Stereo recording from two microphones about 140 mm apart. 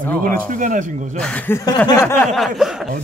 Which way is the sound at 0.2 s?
75° right (ahead or behind).